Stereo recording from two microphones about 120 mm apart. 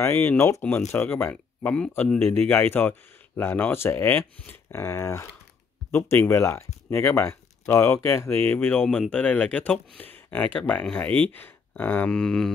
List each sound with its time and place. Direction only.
0.0 s speech: 20° left (ahead or behind)